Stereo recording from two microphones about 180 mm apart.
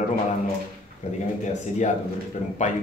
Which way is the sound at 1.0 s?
40° left (ahead or behind).